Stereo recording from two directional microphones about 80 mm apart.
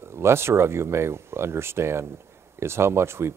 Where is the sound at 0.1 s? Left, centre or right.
Right.